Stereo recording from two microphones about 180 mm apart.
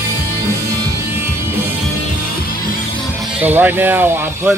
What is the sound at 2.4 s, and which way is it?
Music, 50° left (ahead or behind).